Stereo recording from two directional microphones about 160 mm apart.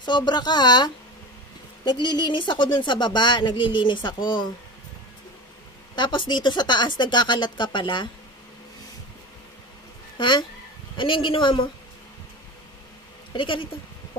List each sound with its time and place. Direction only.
0.0 s speech: 25° left (ahead or behind)
5.9 s speech: 30° left (ahead or behind)
10.1 s a woman's voice: 30° left (ahead or behind)
13.3 s a woman's voice: 30° left (ahead or behind)